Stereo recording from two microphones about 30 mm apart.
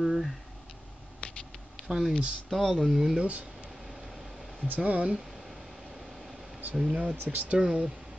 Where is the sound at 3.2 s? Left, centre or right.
Right.